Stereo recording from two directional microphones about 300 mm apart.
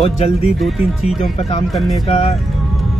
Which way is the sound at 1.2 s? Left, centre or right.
Centre.